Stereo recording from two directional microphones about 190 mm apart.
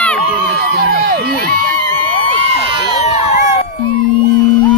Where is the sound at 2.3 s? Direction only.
30° right (ahead or behind).